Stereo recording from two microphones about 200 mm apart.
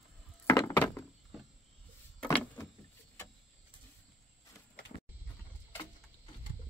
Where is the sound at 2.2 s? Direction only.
5° left (ahead or behind).